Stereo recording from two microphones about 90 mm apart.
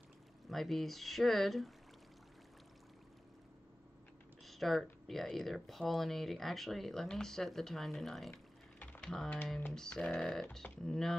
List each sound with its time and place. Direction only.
0.5 s speech: centre (ahead or behind)
4.5 s speech: centre (ahead or behind)
8.3 s a sound: 20° left (ahead or behind)
9.0 s speech: 5° left (ahead or behind)